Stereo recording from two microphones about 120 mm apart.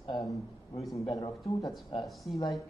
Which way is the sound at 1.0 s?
35° left (ahead or behind).